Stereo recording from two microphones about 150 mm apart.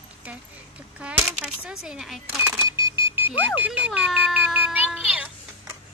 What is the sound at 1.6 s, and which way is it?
Speech, 5° right (ahead or behind).